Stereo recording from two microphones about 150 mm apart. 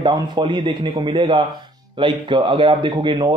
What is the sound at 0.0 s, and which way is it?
A man's voice, 30° right (ahead or behind).